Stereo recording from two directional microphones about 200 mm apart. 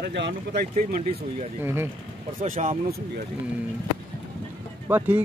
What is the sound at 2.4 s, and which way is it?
Speech, 35° right (ahead or behind).